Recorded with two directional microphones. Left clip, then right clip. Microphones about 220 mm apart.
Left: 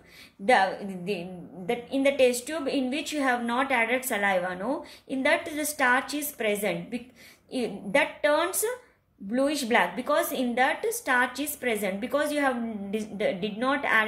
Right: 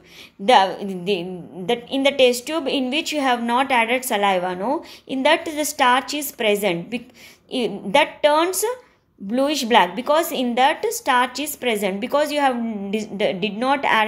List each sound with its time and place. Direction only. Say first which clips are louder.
0.5 s a woman's voice: right 7 dB; 30° right (ahead or behind)